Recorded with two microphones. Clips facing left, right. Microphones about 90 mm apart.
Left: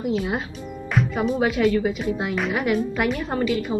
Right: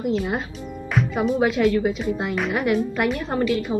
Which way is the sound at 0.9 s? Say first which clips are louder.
Right 1 dB; centre (ahead or behind).